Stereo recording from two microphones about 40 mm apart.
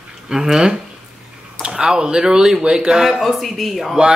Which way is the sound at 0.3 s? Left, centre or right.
Centre.